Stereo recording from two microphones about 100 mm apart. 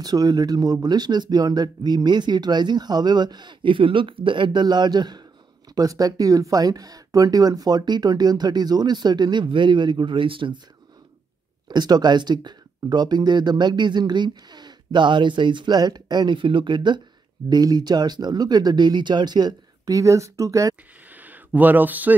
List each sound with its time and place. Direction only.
0.0 s speech: 40° right (ahead or behind); by 10.6 s 55° right (ahead or behind)
11.7 s speech: 45° right (ahead or behind)
21.1 s a sound: 15° right (ahead or behind)